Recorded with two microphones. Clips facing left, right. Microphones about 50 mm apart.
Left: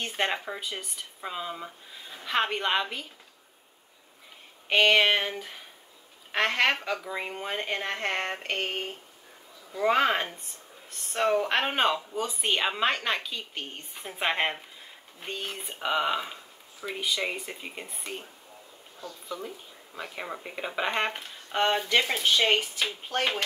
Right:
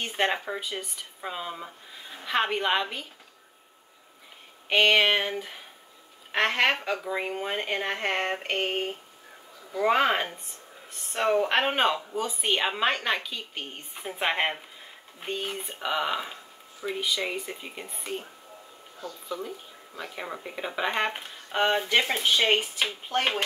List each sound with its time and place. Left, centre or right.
0.0 s a woman's voice: centre
4.6 s a woman's voice: centre
20.4 s a woman's voice: centre